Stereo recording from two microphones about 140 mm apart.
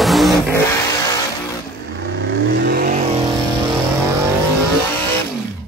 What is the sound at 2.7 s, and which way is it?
Vehicle, 85° right.